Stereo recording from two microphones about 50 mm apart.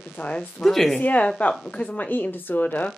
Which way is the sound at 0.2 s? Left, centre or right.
Left.